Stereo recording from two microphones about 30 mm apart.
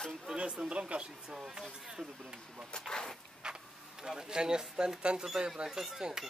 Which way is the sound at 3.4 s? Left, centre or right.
Right.